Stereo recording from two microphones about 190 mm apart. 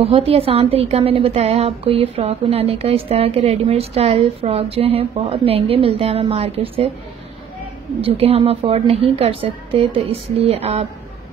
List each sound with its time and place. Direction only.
0.0 s a woman's voice: 30° right (ahead or behind)
8.0 s a woman's voice: 30° right (ahead or behind)